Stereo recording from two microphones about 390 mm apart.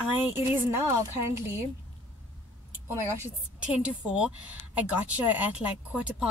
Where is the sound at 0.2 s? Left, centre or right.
Centre.